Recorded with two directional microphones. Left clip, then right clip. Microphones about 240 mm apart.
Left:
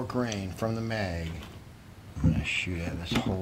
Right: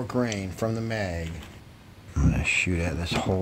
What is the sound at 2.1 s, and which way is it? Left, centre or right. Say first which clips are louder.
Speech: right 5 dB; right.